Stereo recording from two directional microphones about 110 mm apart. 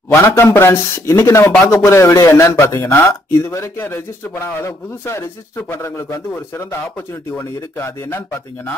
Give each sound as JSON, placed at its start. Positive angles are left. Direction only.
{"t": 0.1, "sound": "a man's voice", "side_deg": 25}